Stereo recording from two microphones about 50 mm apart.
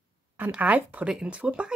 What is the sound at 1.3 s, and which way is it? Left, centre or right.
Speech, centre.